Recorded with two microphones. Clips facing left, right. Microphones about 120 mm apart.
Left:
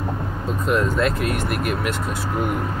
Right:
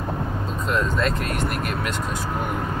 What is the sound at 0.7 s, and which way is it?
Speech, 10° left (ahead or behind).